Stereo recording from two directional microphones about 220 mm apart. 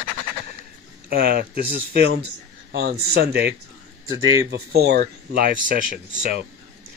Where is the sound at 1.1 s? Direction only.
40° right (ahead or behind).